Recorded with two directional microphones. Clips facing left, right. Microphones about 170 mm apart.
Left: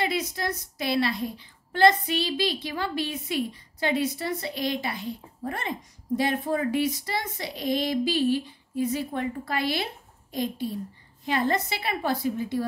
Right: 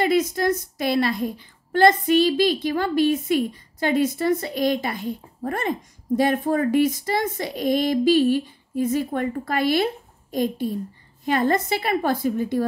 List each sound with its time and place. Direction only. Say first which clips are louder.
0.0 s a woman's voice: right 8 dB; 50° right (ahead or behind)